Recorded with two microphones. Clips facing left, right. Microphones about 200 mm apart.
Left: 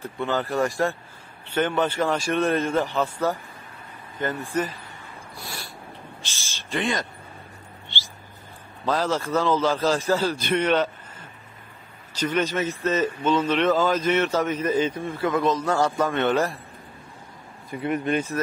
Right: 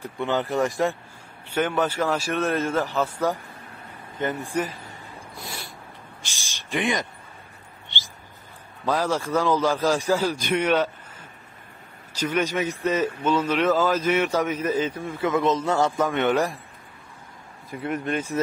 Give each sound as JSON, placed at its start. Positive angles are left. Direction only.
{"t": 0.0, "sound": "a man's voice", "side_deg": -15}
{"t": 4.2, "sound": "a man's voice", "side_deg": -20}
{"t": 5.3, "sound": "snort", "side_deg": -20}
{"t": 6.2, "sound": "a man's voice", "side_deg": -15}
{"t": 8.8, "sound": "a man's voice", "side_deg": -10}
{"t": 15.3, "sound": "a man's voice", "side_deg": -25}
{"t": 17.6, "sound": "speech", "side_deg": 0}